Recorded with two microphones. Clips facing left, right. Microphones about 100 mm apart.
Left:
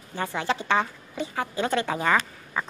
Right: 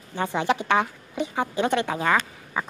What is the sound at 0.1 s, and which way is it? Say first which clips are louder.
A woman's voice: right 4 dB; 15° right (ahead or behind).